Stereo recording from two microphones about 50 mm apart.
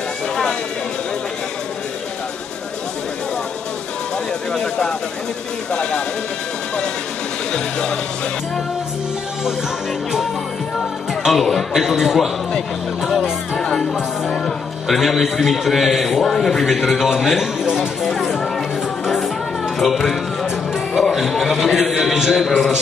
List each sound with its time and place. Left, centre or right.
4.6 s speech: centre
7.5 s speech: centre
11.2 s a man's voice: centre
13.6 s music: centre
14.9 s a man's voice: centre
17.6 s a sound: centre
19.0 s music: centre
19.8 s a man's voice: centre